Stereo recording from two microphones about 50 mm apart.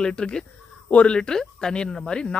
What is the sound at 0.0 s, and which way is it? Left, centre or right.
Speech, centre.